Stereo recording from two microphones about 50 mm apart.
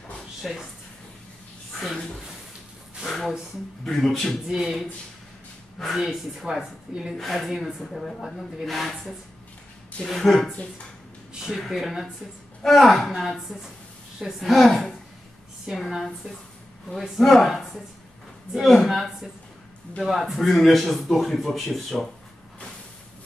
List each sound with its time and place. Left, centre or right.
0.4 s speech: centre
3.1 s a sound: centre
3.8 s speech: centre
4.5 s a woman's voice: centre
5.9 s a woman's voice: centre
10.5 s speech: left
11.5 s speech: centre
15.9 s speech: centre